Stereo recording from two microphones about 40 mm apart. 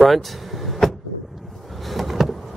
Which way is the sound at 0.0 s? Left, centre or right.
Centre.